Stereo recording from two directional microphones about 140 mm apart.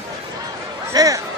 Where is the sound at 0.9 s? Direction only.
25° right (ahead or behind).